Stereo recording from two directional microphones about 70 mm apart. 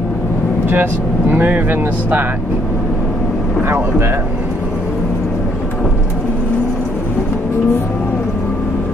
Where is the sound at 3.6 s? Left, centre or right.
Right.